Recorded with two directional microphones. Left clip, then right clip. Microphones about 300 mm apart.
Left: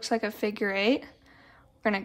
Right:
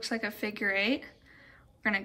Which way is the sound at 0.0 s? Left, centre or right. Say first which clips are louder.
Left 5 dB; centre.